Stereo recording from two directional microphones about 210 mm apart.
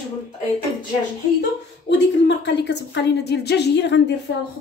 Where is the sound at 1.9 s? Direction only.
55° left (ahead or behind).